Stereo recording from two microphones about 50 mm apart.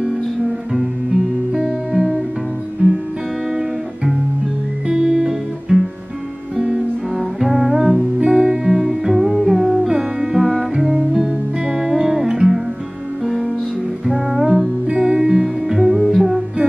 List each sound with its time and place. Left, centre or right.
1.6 s music: centre
2.8 s music: right
3.4 s music: centre